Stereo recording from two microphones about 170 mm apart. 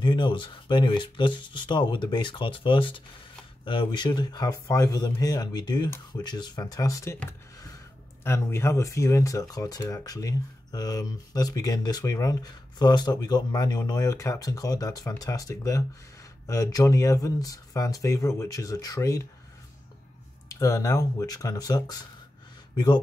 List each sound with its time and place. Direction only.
0.0 s speech: 30° left (ahead or behind)
7.2 s a sound: 15° left (ahead or behind)
8.2 s speech: 15° left (ahead or behind)
20.4 s speech: 20° left (ahead or behind)